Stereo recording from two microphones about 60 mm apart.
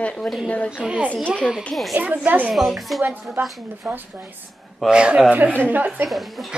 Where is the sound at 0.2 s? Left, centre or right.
Centre.